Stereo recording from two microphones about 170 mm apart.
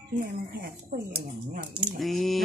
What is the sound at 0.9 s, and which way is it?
Speech, 50° right (ahead or behind).